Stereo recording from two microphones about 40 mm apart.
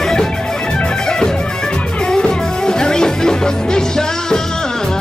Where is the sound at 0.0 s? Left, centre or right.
Centre.